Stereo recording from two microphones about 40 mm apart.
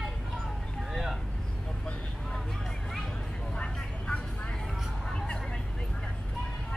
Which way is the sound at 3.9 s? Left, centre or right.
Left.